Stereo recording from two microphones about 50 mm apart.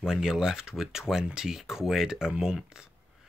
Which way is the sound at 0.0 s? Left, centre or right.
Centre.